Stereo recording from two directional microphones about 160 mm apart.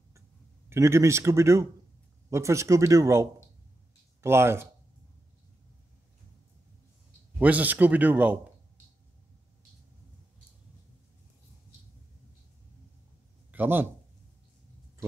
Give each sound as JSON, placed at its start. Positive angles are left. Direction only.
{"t": 0.7, "sound": "speech", "side_deg": -15}
{"t": 7.3, "sound": "speech", "side_deg": -10}
{"t": 13.5, "sound": "a man's voice", "side_deg": -10}